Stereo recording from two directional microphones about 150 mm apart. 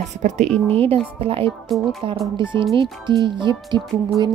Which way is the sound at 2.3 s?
30° right (ahead or behind).